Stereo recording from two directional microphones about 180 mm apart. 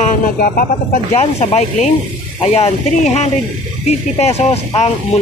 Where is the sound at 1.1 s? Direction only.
35° left (ahead or behind).